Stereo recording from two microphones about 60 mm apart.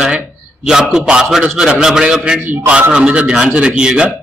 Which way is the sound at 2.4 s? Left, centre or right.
Right.